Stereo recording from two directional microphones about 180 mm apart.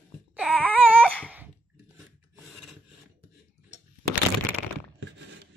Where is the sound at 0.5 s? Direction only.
10° left (ahead or behind).